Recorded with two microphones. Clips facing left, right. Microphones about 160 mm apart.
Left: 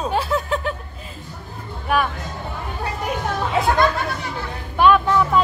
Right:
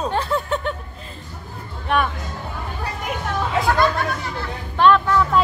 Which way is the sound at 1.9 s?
5° left (ahead or behind).